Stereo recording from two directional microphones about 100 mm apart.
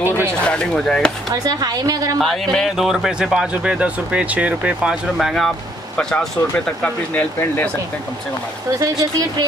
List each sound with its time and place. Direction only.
0.5 s speech: 10° left (ahead or behind)
1.3 s a woman's voice: 40° right (ahead or behind)
2.1 s speech: 5° left (ahead or behind); by 4.9 s 15° right (ahead or behind)
5.1 s speech: 5° left (ahead or behind)
8.7 s a woman's voice: 35° right (ahead or behind)